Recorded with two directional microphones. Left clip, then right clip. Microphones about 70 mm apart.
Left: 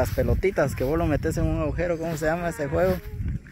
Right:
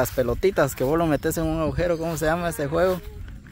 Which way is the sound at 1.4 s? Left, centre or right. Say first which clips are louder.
Right 3 dB; right.